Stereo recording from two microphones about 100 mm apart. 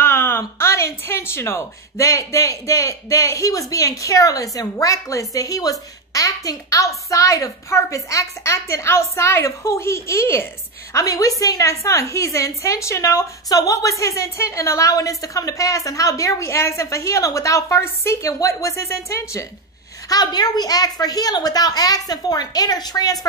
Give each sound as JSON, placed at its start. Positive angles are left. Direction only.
{"t": 0.0, "sound": "speech", "side_deg": 25}
{"t": 20.1, "sound": "speech", "side_deg": 40}